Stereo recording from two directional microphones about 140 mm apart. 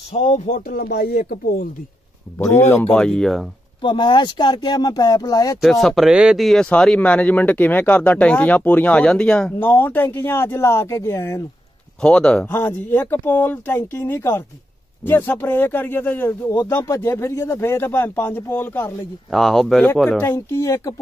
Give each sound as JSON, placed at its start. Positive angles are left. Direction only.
{"t": 0.1, "sound": "speech", "side_deg": 60}
{"t": 2.3, "sound": "speech", "side_deg": 20}
{"t": 2.9, "sound": "speech", "side_deg": 5}
{"t": 3.8, "sound": "speech", "side_deg": 35}
{"t": 5.6, "sound": "speech", "side_deg": 0}
{"t": 12.0, "sound": "speech", "side_deg": 5}
{"t": 19.3, "sound": "speech", "side_deg": 0}
{"t": 20.1, "sound": "speech", "side_deg": 15}